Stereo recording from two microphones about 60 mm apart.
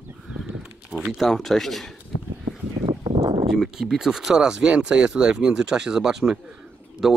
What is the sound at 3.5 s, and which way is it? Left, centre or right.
Speech, centre.